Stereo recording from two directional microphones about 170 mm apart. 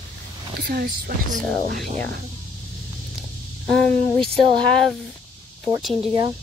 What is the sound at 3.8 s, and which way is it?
Speech, 5° left (ahead or behind).